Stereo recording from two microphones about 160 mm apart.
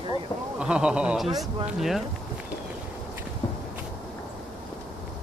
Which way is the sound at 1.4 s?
Centre (ahead or behind).